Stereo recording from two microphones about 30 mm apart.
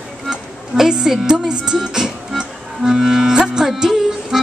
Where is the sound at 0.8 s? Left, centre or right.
Centre.